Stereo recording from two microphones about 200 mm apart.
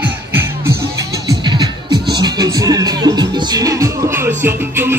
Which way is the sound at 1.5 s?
20° right (ahead or behind).